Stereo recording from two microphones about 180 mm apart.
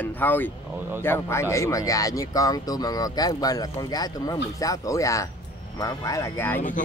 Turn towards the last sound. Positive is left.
turn(degrees=15)  # may be behind; listen again after turning